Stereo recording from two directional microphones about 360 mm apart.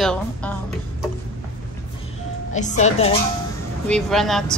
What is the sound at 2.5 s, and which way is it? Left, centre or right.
Speech, centre.